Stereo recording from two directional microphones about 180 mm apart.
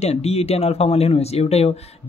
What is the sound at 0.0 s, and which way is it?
Speech, 35° left (ahead or behind).